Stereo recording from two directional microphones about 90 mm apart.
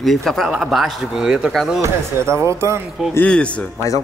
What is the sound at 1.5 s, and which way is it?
Speech, centre (ahead or behind).